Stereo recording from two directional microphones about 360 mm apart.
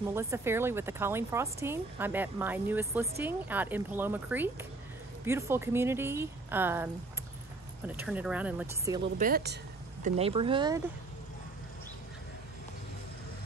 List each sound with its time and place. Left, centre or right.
0.0 s speech: centre
9.0 s a woman's voice: right